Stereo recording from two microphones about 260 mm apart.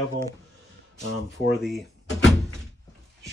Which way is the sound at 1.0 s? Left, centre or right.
Left.